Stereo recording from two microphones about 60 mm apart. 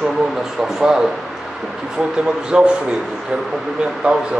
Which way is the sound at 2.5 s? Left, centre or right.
Centre.